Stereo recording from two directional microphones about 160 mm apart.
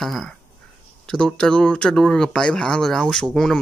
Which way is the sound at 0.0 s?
Centre (ahead or behind).